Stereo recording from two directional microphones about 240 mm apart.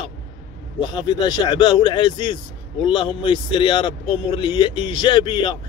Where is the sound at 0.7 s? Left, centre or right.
Centre.